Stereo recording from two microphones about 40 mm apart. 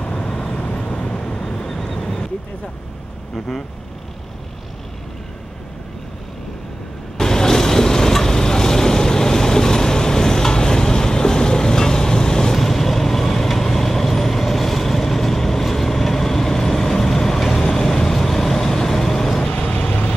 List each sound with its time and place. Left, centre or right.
0.0 s vehicle: centre
0.6 s vehicle: left
1.4 s vehicle: centre
2.0 s vehicle: centre
3.3 s speech: centre
7.2 s vehicle: centre
19.8 s vehicle: left